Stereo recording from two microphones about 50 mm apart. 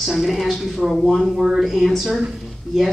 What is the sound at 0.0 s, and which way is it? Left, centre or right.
A woman's voice, centre.